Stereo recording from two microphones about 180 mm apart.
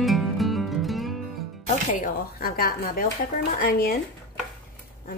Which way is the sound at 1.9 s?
50° left (ahead or behind).